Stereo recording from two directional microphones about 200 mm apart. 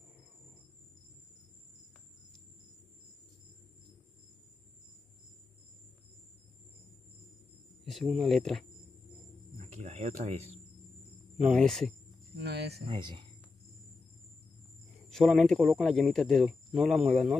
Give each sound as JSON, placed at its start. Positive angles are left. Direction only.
{"t": 7.8, "sound": "speech", "side_deg": 0}
{"t": 9.6, "sound": "a sound", "side_deg": -35}
{"t": 11.4, "sound": "speech", "side_deg": 0}
{"t": 12.4, "sound": "speech", "side_deg": -55}
{"t": 12.8, "sound": "speech", "side_deg": -25}
{"t": 15.0, "sound": "speech", "side_deg": 0}